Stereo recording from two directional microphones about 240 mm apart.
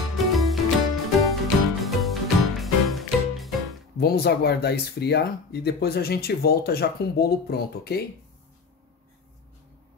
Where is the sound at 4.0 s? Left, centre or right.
Left.